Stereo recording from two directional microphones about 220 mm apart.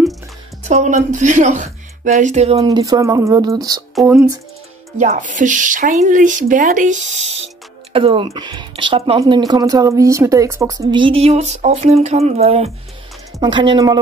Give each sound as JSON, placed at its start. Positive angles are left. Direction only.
{"t": 0.7, "sound": "speech", "side_deg": -30}
{"t": 4.9, "sound": "speech", "side_deg": -35}